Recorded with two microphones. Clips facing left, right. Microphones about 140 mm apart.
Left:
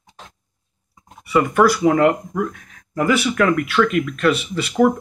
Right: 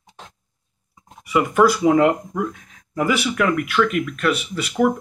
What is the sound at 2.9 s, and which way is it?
Speech, 10° right (ahead or behind).